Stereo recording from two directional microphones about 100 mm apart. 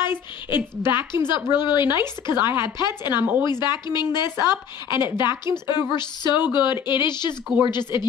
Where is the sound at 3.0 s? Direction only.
20° right (ahead or behind).